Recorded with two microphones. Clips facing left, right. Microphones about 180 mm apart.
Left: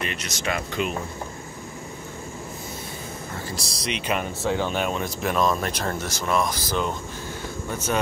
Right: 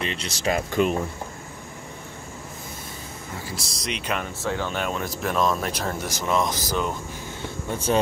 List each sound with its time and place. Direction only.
0.0 s speech: 30° right (ahead or behind)
0.7 s speech: 45° right (ahead or behind)
3.4 s speech: centre (ahead or behind)
4.2 s speech: 15° left (ahead or behind)
4.7 s speech: 5° left (ahead or behind); by 6.8 s 20° right (ahead or behind)
7.7 s speech: 30° right (ahead or behind)